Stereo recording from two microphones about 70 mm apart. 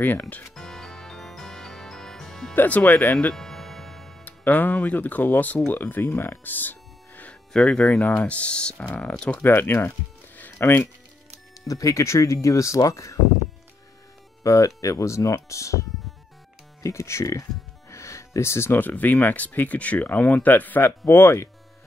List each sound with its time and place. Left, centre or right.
0.0 s speech: left
0.6 s music: centre
2.5 s speech: left
3.3 s music: centre
4.2 s speech: left
6.0 s music: left
7.5 s speech: centre
9.4 s speech: left
11.6 s speech: left
14.4 s speech: left
18.8 s speech: left